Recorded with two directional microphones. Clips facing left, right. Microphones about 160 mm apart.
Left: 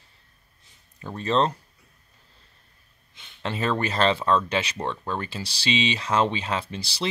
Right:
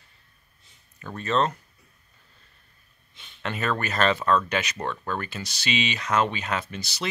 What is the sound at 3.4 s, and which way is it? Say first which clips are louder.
Speech: left 2 dB; 30° left (ahead or behind).